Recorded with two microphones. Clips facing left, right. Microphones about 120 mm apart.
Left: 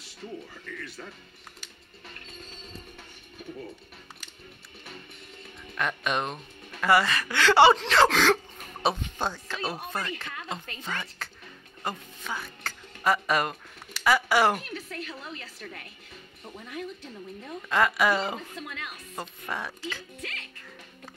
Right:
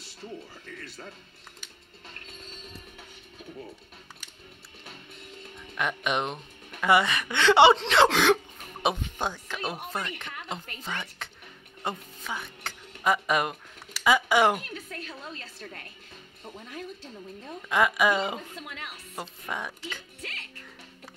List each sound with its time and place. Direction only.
5.8 s a woman's voice: 15° right (ahead or behind)
16.4 s a woman's voice: 20° right (ahead or behind)
19.1 s speech: 10° right (ahead or behind)